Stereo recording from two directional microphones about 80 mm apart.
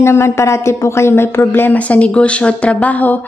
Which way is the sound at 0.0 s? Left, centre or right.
Left.